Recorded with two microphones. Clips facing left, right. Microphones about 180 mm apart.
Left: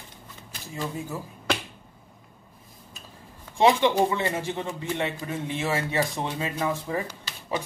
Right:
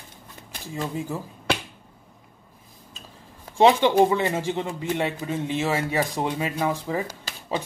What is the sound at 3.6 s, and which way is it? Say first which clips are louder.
Speech: right 3 dB; 15° right (ahead or behind).